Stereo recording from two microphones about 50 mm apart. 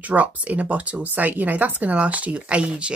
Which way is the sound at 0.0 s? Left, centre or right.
Right.